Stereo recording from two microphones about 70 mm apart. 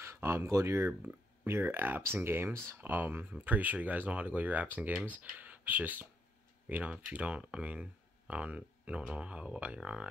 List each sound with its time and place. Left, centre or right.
0.0 s speech: right; by 10.0 s centre